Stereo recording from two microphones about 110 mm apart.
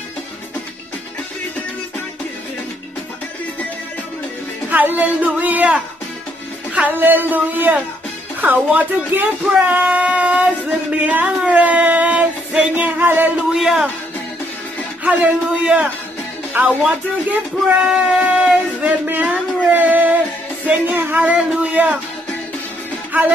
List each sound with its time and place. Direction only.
4.6 s speech: 15° right (ahead or behind)
13.5 s speech: 5° right (ahead or behind)
15.0 s speech: 10° right (ahead or behind)
17.8 s a sound: 10° right (ahead or behind)
20.6 s speech: 15° right (ahead or behind)
23.1 s speech: 15° right (ahead or behind)